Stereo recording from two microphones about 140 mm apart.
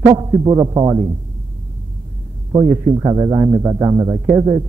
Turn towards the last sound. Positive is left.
turn(degrees=-30)  # may be behind; listen again after turning